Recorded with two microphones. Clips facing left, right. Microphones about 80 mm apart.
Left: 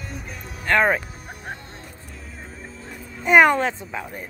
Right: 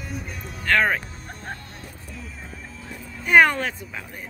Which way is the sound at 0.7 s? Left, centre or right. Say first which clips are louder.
Left 2 dB; left.